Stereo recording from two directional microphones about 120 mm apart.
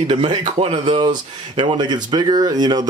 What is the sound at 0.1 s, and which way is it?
Speech, 40° right (ahead or behind).